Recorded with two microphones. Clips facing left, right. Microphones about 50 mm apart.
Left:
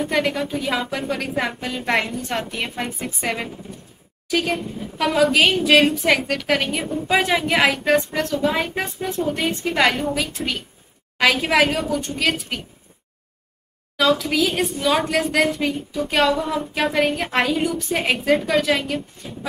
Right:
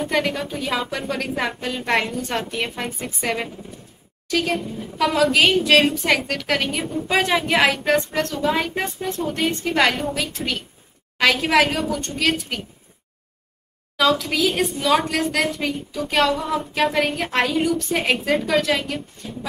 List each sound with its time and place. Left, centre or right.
0.0 s child singing: centre
13.9 s child singing: centre